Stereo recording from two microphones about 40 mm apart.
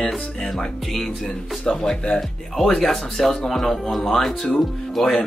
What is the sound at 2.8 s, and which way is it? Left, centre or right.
Speech, centre.